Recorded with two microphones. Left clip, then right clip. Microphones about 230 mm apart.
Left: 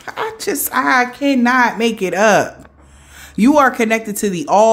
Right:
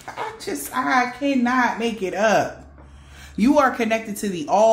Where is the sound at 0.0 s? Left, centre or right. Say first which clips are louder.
Left 8 dB; left.